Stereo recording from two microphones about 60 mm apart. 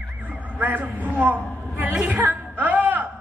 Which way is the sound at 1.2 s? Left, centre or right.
Right.